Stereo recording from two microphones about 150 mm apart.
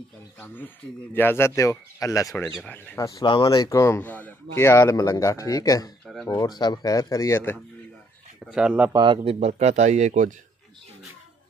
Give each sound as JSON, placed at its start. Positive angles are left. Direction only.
{"t": 1.1, "sound": "speech", "side_deg": 15}
{"t": 2.5, "sound": "speech", "side_deg": 10}
{"t": 3.1, "sound": "speech", "side_deg": 30}
{"t": 8.5, "sound": "speech", "side_deg": -5}
{"t": 8.9, "sound": "speech", "side_deg": -30}